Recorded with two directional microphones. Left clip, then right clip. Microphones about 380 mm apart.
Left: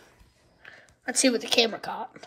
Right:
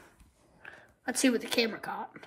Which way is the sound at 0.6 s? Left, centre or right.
Centre.